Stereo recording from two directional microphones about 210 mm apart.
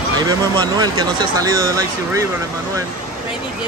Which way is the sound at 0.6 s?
20° right (ahead or behind).